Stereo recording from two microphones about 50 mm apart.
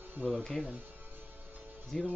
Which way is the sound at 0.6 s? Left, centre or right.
Right.